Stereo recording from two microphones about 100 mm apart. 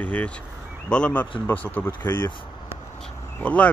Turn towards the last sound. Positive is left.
turn(degrees=15)  # may be behind; listen again after turning